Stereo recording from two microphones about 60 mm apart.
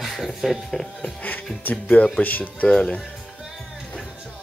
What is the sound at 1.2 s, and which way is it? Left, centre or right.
Speech, left.